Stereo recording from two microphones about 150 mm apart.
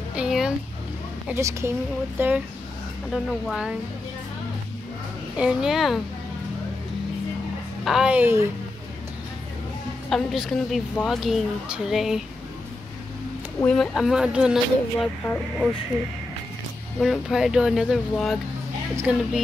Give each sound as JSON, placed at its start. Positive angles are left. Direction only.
{"t": 0.1, "sound": "a sound", "side_deg": -5}
{"t": 1.3, "sound": "a woman's voice", "side_deg": -20}
{"t": 5.4, "sound": "a woman's voice", "side_deg": -5}
{"t": 7.8, "sound": "a woman's voice", "side_deg": -5}
{"t": 10.0, "sound": "a woman's voice", "side_deg": 0}
{"t": 13.7, "sound": "a woman's voice", "side_deg": 0}
{"t": 17.0, "sound": "a woman's voice", "side_deg": 0}